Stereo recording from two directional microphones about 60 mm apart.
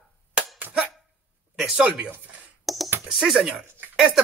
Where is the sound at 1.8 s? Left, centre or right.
Right.